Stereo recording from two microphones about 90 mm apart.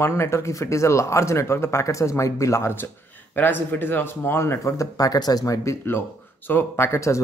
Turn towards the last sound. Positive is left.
turn(degrees=30)  # may be behind; listen again after turning